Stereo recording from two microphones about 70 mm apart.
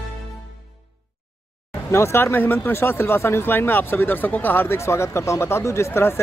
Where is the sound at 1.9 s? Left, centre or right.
Left.